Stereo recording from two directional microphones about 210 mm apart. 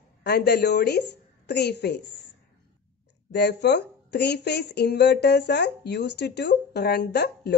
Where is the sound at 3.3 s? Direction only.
55° left (ahead or behind).